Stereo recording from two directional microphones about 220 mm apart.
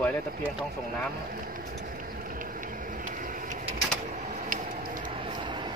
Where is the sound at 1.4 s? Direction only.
40° right (ahead or behind).